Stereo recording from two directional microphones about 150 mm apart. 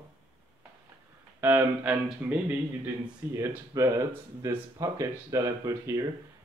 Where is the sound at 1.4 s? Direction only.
10° right (ahead or behind).